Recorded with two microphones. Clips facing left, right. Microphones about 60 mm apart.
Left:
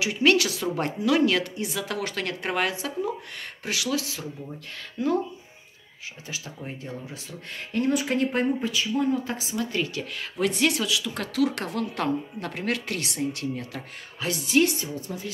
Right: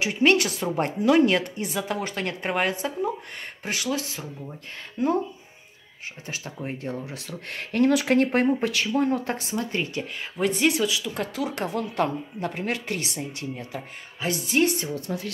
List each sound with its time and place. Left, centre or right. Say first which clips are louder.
0.0 s speech: right 1 dB; right
6.2 s speech: right 3 dB; right
9.7 s speech: even; right
14.6 s speech: right 1 dB; right
15.0 s speech: right 3 dB; right